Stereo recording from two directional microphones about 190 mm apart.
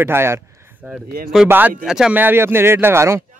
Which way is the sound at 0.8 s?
Centre (ahead or behind).